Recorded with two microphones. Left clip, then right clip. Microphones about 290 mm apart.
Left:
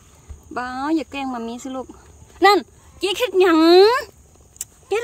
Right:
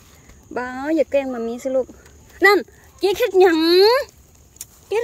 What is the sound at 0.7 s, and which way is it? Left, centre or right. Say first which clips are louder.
Speech: right 6 dB; left.